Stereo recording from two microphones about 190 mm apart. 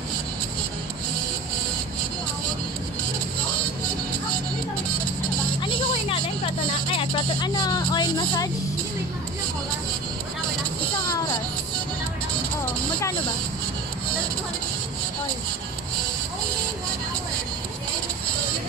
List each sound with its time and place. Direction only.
5.6 s music: 25° left (ahead or behind)